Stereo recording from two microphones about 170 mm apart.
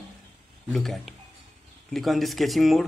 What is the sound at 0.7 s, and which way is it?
A man's voice, centre (ahead or behind).